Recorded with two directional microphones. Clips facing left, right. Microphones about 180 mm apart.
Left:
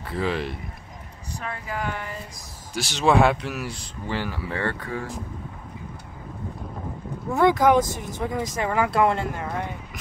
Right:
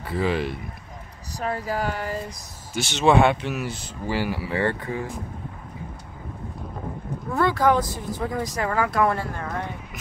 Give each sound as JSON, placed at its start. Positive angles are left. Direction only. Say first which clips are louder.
{"t": 0.0, "sound": "speech", "louder": "right 2 dB", "side_deg": 0}
{"t": 1.4, "sound": "speech", "louder": "right 5 dB", "side_deg": -35}
{"t": 2.7, "sound": "speech", "louder": "right 2 dB", "side_deg": 0}
{"t": 7.3, "sound": "speech", "louder": "left 2 dB", "side_deg": 15}